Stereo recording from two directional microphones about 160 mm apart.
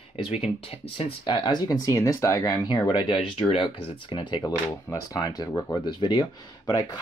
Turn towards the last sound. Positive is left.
turn(degrees=25)  # may be behind; listen again after turning